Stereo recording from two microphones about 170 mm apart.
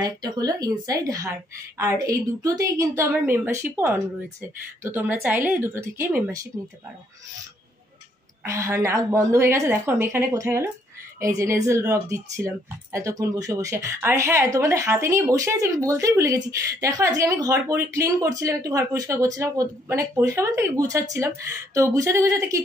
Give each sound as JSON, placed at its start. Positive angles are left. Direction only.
{"t": 0.0, "sound": "speech", "side_deg": -25}
{"t": 8.5, "sound": "speech", "side_deg": -15}